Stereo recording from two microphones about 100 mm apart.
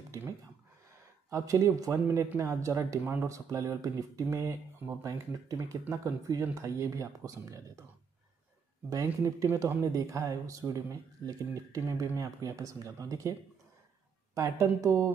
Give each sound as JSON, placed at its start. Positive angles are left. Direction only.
{"t": 1.3, "sound": "speech", "side_deg": -30}
{"t": 8.9, "sound": "speech", "side_deg": -30}
{"t": 14.3, "sound": "speech", "side_deg": -35}